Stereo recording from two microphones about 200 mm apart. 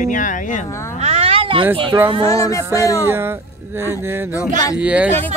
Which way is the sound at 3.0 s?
10° right (ahead or behind).